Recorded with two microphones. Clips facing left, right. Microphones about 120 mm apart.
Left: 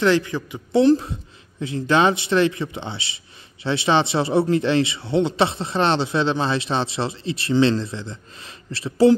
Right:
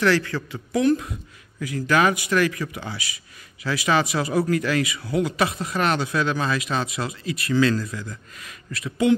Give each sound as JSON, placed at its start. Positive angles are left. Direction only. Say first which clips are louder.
{"t": 0.0, "sound": "speech", "louder": "left 2 dB", "side_deg": 20}
{"t": 0.7, "sound": "speech", "louder": "left 5 dB", "side_deg": 30}